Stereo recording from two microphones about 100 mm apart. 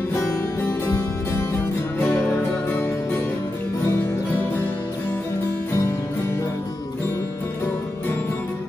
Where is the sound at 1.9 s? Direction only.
10° left (ahead or behind).